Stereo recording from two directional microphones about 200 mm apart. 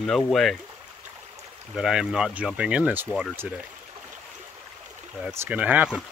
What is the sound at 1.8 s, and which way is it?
Speech, 5° right (ahead or behind).